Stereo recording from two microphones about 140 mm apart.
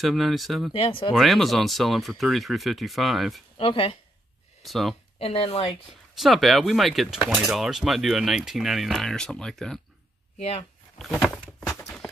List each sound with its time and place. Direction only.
0.0 s speech: centre (ahead or behind)
0.8 s speech: 35° left (ahead or behind)
1.1 s speech: centre (ahead or behind)
3.5 s speech: 40° left (ahead or behind)
4.6 s speech: centre (ahead or behind)
5.2 s speech: 45° left (ahead or behind)
6.1 s speech: centre (ahead or behind)
10.3 s speech: 45° left (ahead or behind)